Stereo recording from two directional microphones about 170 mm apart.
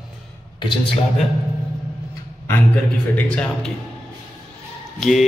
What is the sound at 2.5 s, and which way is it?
Speech, 10° left (ahead or behind).